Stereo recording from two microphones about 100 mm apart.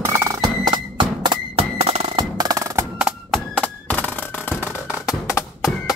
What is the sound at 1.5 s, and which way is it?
Music, 85° right.